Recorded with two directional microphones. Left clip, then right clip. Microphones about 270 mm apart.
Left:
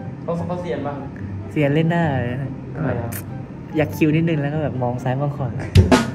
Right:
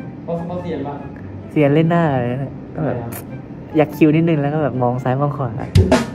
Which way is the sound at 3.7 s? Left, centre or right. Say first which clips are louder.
Right 5 dB; centre.